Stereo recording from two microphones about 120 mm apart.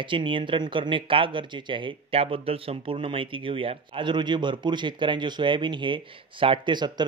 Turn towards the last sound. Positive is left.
turn(degrees=-40)  # may be behind; listen again after turning